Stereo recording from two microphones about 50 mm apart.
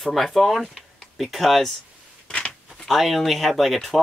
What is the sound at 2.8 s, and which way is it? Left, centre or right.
Speech, centre.